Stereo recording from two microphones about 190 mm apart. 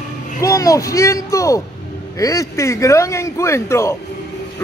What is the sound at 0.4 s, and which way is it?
A man's voice, 15° left (ahead or behind).